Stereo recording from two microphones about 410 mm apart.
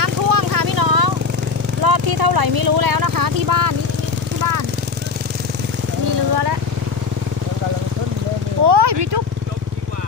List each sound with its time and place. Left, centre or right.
0.0 s vehicle: right
8.6 s vehicle: right